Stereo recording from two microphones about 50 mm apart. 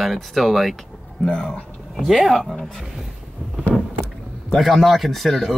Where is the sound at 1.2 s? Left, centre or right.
Centre.